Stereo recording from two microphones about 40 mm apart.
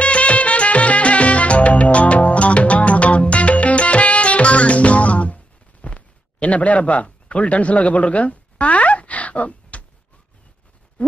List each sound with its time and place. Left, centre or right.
0.0 s music: left